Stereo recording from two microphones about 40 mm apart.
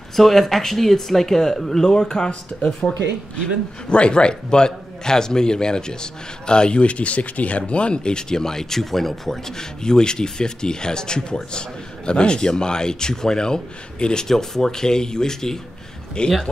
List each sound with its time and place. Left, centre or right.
0.1 s speech: centre; by 2.9 s left
3.9 s speech: left
16.2 s speech: left